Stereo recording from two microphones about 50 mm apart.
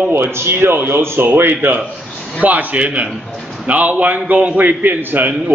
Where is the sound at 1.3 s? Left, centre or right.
Right.